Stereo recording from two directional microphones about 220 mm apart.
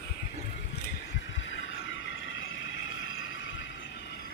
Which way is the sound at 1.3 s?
60° left (ahead or behind).